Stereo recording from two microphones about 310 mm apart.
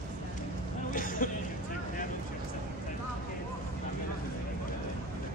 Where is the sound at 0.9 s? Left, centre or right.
Left.